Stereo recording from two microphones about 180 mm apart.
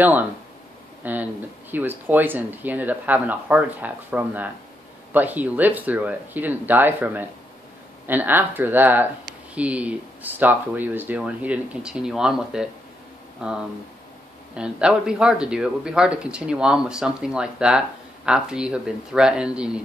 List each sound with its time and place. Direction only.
1.0 s speech: 10° right (ahead or behind)